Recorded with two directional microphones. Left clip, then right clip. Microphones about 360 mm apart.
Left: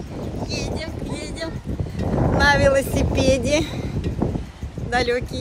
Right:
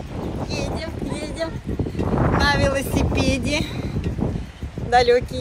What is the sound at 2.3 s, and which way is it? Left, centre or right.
Speech, left.